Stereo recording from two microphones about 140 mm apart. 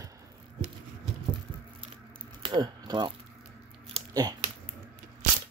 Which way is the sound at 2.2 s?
35° right (ahead or behind).